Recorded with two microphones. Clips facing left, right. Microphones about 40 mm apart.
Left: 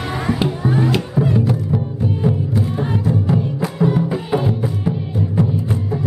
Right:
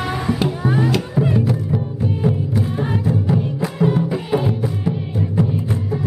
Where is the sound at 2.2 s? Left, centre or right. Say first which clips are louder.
Even; centre.